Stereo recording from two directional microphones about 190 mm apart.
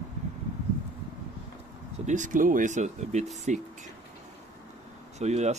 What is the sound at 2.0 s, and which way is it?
Speech, 40° right (ahead or behind).